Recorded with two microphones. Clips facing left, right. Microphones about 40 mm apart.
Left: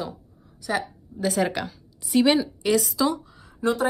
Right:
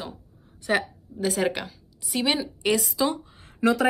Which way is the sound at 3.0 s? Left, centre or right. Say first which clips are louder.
Even; centre.